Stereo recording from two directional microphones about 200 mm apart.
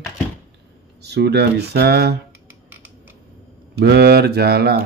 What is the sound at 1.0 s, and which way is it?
Speech, 55° right (ahead or behind).